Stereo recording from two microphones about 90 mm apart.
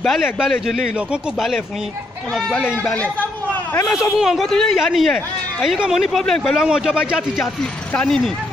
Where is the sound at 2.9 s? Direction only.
20° left (ahead or behind).